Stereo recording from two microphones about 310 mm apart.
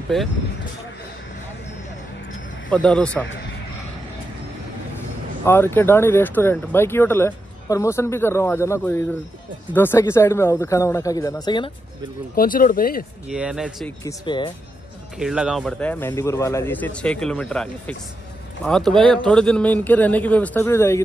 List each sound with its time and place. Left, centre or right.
2.7 s a man's voice: centre
5.4 s speech: centre
12.4 s speech: left
13.3 s a man's voice: centre
14.0 s speech: centre
15.1 s a man's voice: centre